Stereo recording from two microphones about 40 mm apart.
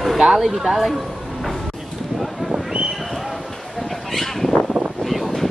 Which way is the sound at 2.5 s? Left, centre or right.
Centre.